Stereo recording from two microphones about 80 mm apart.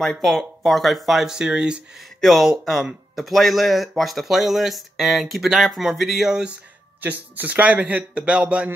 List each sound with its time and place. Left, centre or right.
0.0 s a man's voice: centre
7.0 s a man's voice: right